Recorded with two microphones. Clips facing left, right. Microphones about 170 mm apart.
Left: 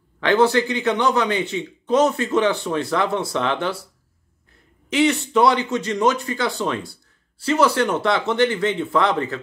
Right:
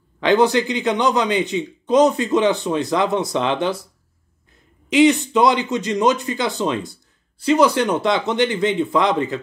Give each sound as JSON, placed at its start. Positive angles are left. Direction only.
{"t": 0.2, "sound": "speech", "side_deg": -15}
{"t": 4.8, "sound": "speech", "side_deg": -15}